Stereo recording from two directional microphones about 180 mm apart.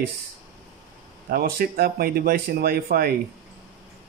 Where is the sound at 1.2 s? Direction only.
55° right (ahead or behind).